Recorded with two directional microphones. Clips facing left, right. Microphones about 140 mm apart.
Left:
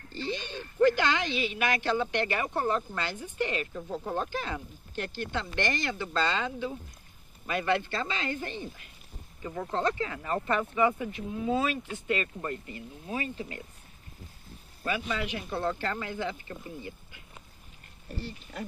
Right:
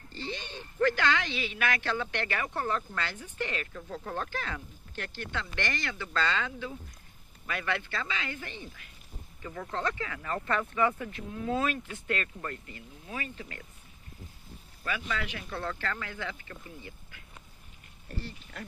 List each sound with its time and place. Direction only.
0.7 s a woman's voice: 20° left (ahead or behind)
9.4 s a woman's voice: 20° left (ahead or behind)
14.8 s a woman's voice: 25° left (ahead or behind)